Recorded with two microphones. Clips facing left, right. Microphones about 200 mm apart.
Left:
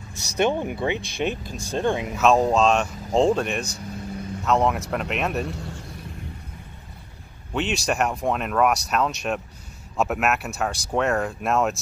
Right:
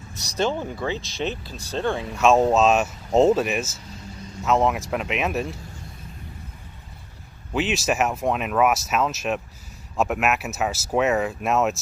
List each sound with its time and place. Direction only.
0.4 s speech: 15° left (ahead or behind)
2.1 s speech: centre (ahead or behind)
5.6 s a sound: 80° left
7.5 s speech: centre (ahead or behind)